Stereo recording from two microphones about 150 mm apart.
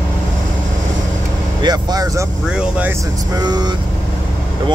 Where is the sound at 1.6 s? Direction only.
25° right (ahead or behind).